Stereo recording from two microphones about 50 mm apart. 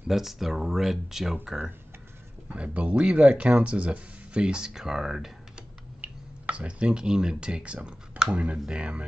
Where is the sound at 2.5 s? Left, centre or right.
Right; by 5.3 s centre.